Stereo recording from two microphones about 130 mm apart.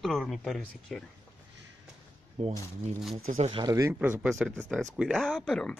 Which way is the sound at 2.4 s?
55° right (ahead or behind).